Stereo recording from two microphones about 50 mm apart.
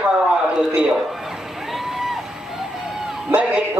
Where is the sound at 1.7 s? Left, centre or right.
Centre.